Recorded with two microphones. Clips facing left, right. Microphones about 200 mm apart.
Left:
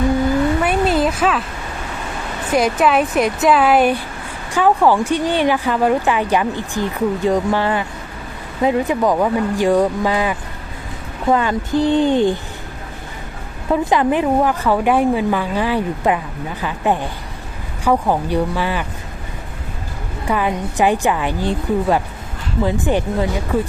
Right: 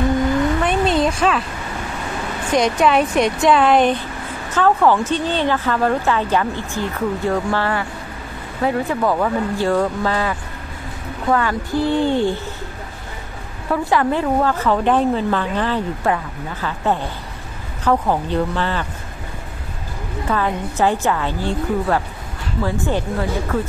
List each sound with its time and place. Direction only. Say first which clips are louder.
0.6 s a sound: left 1 dB; 5° left (ahead or behind)
2.5 s speech: left 1 dB; 5° left (ahead or behind)
13.7 s speech: left 2 dB; 20° left (ahead or behind)
20.2 s speech: left 2 dB; 15° left (ahead or behind)